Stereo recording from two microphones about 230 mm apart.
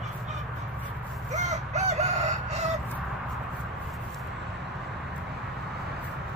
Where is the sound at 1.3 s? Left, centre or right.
Right.